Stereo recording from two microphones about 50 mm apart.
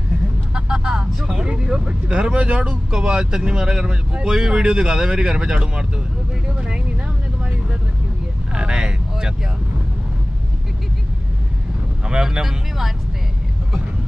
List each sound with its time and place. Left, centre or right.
0.6 s vehicle: centre
1.5 s speech: centre
8.5 s speech: centre
12.1 s speech: centre